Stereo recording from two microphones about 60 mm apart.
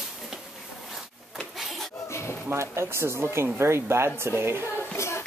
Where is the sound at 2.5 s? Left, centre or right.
Right.